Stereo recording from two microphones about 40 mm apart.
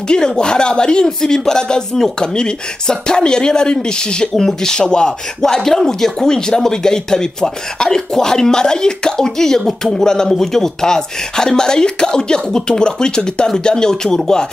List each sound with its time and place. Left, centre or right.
0.1 s speech: left